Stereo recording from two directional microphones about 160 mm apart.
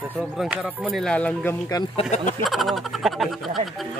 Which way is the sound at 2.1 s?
50° left (ahead or behind).